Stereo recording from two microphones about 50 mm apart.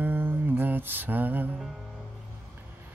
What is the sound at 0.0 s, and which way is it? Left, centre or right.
Music, right.